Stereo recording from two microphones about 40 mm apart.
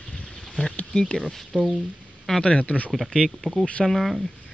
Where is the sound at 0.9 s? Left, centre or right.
Left.